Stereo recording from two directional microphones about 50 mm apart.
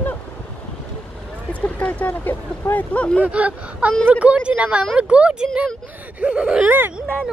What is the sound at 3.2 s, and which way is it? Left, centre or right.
Speech, right.